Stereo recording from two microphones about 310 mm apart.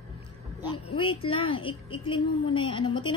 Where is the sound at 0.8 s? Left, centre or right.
Centre.